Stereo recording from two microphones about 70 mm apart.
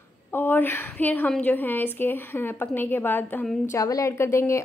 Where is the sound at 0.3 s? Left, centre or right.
Left.